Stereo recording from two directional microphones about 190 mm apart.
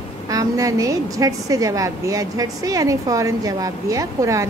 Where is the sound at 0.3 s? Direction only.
20° right (ahead or behind).